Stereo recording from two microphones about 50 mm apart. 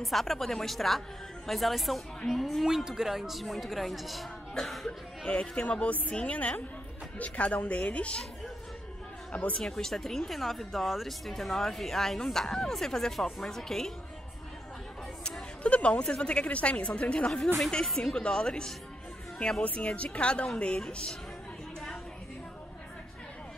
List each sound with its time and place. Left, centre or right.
0.0 s a woman's voice: centre
5.3 s a woman's voice: left
9.3 s a woman's voice: left
9.6 s speech: centre
15.6 s a woman's voice: left
17.8 s a woman's voice: centre
18.1 s speech: centre
19.6 s a woman's voice: left